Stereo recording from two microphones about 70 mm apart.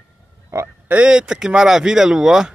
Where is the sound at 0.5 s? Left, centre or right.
Right.